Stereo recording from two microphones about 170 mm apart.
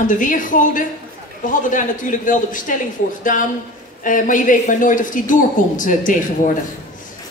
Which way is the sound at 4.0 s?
50° left (ahead or behind).